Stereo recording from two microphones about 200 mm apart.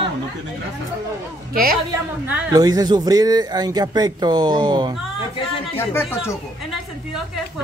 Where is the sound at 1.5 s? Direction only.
45° right (ahead or behind).